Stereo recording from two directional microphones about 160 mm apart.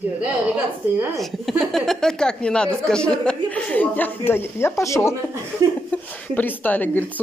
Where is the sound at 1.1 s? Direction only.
Centre (ahead or behind).